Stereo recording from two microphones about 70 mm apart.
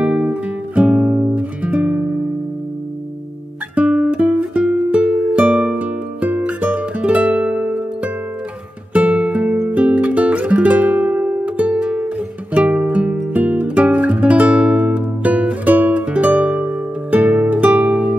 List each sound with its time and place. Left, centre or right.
0.0 s music: centre
3.7 s music: centre